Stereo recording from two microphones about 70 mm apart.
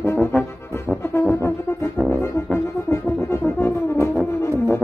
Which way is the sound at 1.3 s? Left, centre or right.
Left.